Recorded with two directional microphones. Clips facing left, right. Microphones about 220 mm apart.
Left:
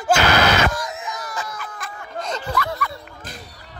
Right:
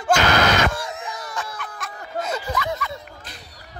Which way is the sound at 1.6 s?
Centre (ahead or behind).